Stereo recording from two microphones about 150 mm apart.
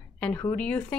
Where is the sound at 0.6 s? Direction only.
10° left (ahead or behind).